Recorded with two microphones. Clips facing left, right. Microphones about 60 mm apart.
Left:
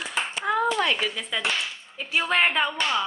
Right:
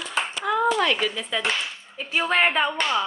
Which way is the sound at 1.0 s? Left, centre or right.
Centre.